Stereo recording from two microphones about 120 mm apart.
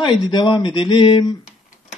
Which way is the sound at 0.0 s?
40° left (ahead or behind).